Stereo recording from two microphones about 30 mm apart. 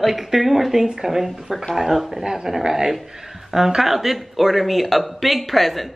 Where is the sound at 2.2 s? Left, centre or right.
Right.